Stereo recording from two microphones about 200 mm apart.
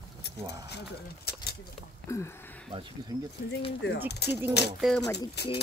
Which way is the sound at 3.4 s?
50° left (ahead or behind).